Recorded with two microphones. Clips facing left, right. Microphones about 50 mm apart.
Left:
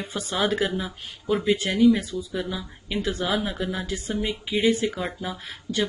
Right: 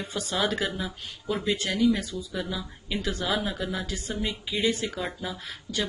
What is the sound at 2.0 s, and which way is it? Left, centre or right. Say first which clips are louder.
Speech: left 3 dB; left.